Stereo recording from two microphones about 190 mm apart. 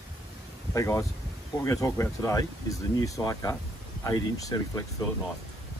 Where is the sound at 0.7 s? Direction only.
15° left (ahead or behind).